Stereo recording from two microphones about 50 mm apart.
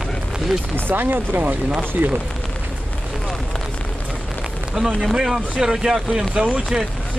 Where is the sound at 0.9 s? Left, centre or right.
Right.